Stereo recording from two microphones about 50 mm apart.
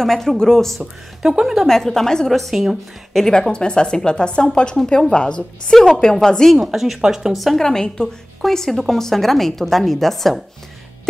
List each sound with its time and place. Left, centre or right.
0.0 s a woman's voice: centre
1.2 s a woman's voice: centre
1.7 s a woman's voice: centre
3.2 s a woman's voice: centre
6.6 s a woman's voice: centre
7.3 s a woman's voice: centre